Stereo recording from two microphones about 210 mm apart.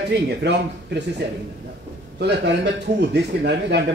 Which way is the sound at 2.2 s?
55° right (ahead or behind).